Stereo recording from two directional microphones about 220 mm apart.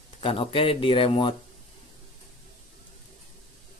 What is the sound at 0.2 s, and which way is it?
Speech, 25° left (ahead or behind).